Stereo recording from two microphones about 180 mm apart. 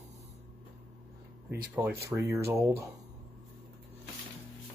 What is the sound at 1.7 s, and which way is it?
Speech, 15° right (ahead or behind).